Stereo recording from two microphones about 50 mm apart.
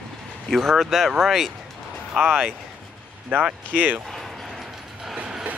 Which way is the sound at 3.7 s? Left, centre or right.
Right.